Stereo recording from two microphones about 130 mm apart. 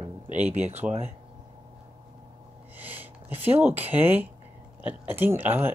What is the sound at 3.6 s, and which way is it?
Speech, 15° right (ahead or behind).